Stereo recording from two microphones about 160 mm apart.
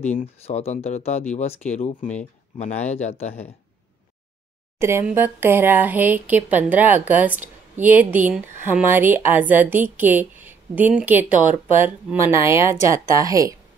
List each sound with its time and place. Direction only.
0.1 s speech: 40° left (ahead or behind)
4.7 s speech: 15° right (ahead or behind)